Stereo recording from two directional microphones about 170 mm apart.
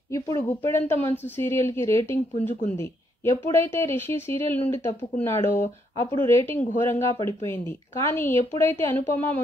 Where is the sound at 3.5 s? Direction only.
15° left (ahead or behind).